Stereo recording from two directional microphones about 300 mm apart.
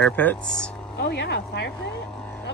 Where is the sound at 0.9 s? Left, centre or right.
Left.